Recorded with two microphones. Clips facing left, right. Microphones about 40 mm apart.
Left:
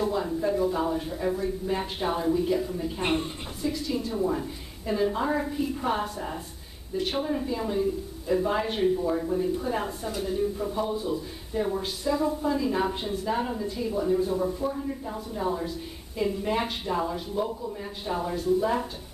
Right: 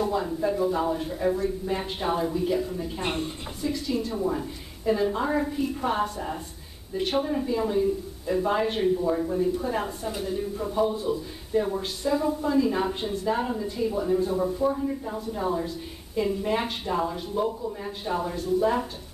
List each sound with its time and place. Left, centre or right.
0.0 s a man's voice: centre